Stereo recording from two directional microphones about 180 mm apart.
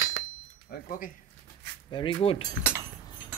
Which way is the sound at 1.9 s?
25° left (ahead or behind).